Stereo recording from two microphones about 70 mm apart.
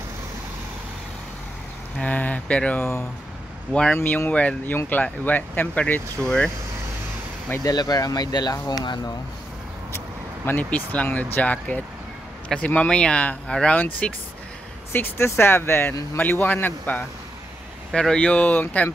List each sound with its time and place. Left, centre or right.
2.0 s speech: left
3.9 s speech: left
6.2 s speech: centre
7.6 s speech: left
9.9 s vehicle: left
10.6 s speech: left
13.7 s speech: left
16.2 s speech: left
17.9 s speech: centre